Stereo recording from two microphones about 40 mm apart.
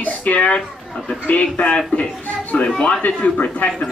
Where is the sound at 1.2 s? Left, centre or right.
Left.